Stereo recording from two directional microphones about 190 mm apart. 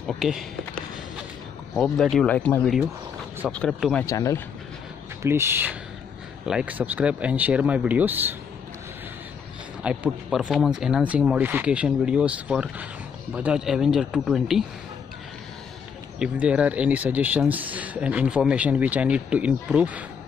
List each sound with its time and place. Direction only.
0.0 s speech: centre (ahead or behind)
4.0 s speech: 15° left (ahead or behind)
5.2 s speech: 15° right (ahead or behind)
9.8 s speech: 5° right (ahead or behind)
16.2 s speech: 5° right (ahead or behind)